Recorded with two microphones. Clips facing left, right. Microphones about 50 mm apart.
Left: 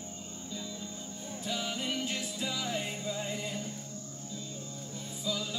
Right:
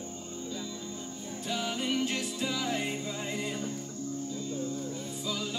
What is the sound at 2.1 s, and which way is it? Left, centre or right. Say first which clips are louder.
Music: right 3 dB; right.